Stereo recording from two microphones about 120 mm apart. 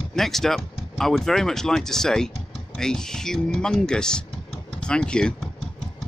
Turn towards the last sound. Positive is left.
turn(degrees=5)  # may be behind; listen again after turning